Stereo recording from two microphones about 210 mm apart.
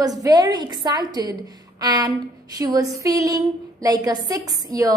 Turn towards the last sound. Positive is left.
turn(degrees=-15)  # may be behind; listen again after turning